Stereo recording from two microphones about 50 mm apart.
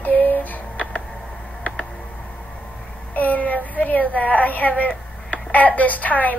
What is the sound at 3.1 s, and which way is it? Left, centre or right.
A woman's voice, left.